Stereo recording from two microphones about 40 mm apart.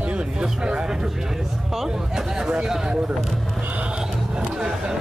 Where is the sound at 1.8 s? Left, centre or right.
Centre.